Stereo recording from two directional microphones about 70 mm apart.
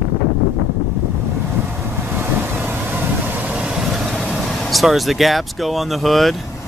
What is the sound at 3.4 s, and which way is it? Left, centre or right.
Vehicle, right.